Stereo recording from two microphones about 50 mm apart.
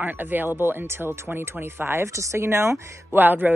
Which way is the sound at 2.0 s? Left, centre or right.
Right.